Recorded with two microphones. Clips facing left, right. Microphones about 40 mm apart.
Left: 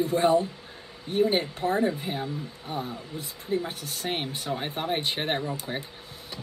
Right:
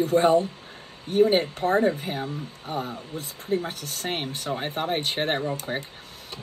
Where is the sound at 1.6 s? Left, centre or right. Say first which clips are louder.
Right 3 dB; centre.